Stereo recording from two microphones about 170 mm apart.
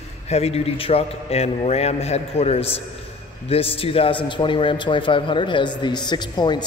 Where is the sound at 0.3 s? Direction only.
35° left (ahead or behind).